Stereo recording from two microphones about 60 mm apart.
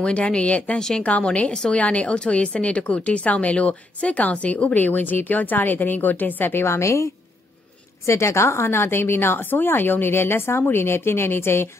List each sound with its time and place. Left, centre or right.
0.0 s a woman's voice: centre
0.7 s a woman's voice: centre
1.0 s a woman's voice: left
1.5 s a woman's voice: centre; by 7.1 s left
8.1 s a woman's voice: left